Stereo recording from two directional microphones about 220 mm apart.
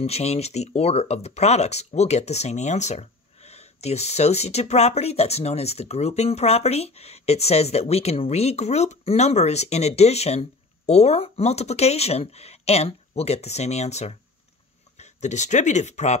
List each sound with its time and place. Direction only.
0.0 s speech: 30° left (ahead or behind)